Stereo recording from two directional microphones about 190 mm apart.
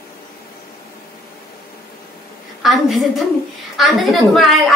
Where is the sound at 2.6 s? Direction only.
Centre (ahead or behind).